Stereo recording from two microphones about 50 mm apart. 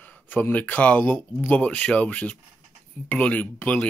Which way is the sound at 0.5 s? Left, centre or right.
Left.